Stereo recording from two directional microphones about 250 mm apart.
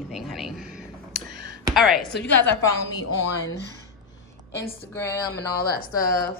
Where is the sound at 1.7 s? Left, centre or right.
Centre.